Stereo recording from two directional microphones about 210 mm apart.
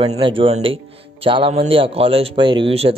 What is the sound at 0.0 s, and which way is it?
Speech, 25° right (ahead or behind).